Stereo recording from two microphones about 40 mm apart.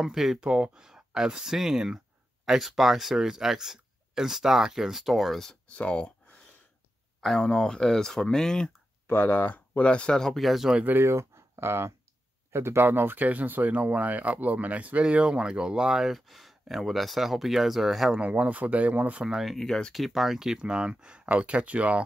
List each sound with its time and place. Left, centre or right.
0.0 s speech: centre
0.4 s speech: right; by 5.5 s centre
5.7 s speech: left
7.2 s speech: centre
9.0 s speech: left
9.8 s speech: left
10.1 s speech: centre
10.4 s speech: centre
10.9 s speech: right; by 16.1 s centre
16.1 s speech: centre
18.1 s speech: right
19.6 s speech: centre
19.9 s speech: centre; by 22.0 s right